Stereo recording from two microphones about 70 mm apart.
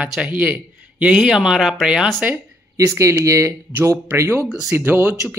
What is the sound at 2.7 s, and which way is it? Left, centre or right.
Speech, right.